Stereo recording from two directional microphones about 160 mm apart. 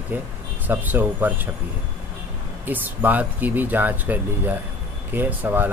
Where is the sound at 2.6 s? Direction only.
10° right (ahead or behind).